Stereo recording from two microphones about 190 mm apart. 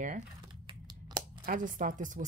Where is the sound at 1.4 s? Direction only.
45° right (ahead or behind).